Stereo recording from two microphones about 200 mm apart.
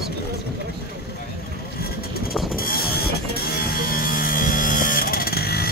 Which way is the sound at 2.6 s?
50° left (ahead or behind).